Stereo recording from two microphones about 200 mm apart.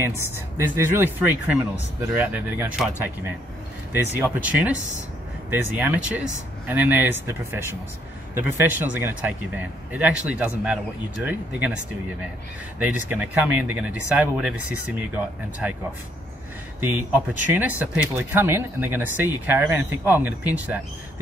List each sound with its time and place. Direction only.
0.0 s speech: 10° right (ahead or behind)
3.9 s speech: 5° right (ahead or behind)
5.8 s speech: 5° right (ahead or behind)
16.8 s speech: 10° right (ahead or behind)